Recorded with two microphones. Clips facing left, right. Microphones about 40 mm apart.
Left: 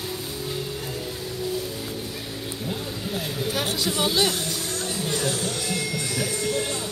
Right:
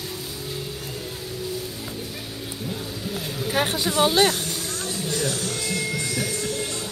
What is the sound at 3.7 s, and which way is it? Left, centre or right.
Speech, right.